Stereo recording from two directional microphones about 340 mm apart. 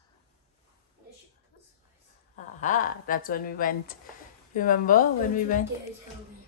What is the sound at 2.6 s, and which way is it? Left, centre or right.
A woman's voice, left.